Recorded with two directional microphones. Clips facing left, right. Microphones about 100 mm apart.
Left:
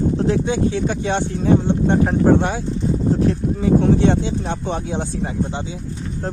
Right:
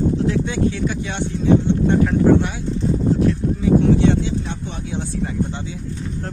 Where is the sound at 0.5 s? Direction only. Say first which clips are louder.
Left 2 dB; 30° left (ahead or behind).